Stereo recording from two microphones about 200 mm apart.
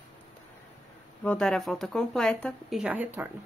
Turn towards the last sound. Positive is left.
turn(degrees=-10)  # may be behind; listen again after turning